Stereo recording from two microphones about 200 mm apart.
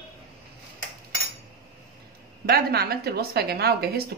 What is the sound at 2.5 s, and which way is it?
A woman's voice, 50° right (ahead or behind).